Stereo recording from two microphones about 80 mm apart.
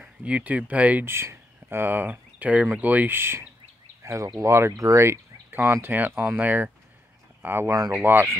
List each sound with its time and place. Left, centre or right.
0.2 s speech: centre
1.0 s speech: right
4.0 s a sound: right
4.4 s speech: right